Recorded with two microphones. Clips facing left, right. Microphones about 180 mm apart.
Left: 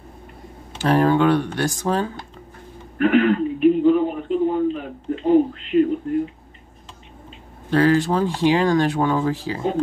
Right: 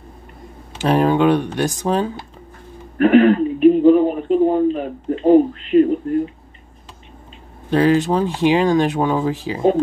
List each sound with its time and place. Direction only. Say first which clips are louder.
0.7 s speech: right 1 dB; 15° right (ahead or behind)
3.0 s speech: right 5 dB; 45° right (ahead or behind)
7.7 s speech: right 2 dB; 20° right (ahead or behind)